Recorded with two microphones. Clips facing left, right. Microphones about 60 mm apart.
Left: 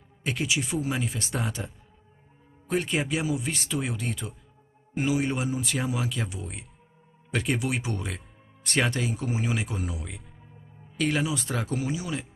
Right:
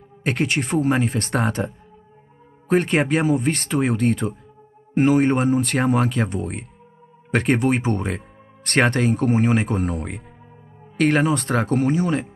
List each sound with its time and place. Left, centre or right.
0.2 s speech: right
2.7 s speech: right